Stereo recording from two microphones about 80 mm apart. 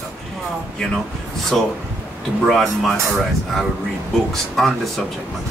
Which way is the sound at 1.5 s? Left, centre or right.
Centre.